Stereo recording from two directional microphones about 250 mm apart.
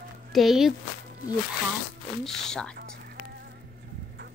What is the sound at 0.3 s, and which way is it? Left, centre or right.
Speech, centre.